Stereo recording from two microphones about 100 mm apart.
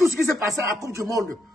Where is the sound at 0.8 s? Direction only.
30° right (ahead or behind).